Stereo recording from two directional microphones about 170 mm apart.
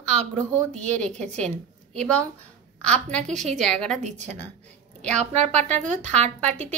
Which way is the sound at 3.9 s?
45° right (ahead or behind).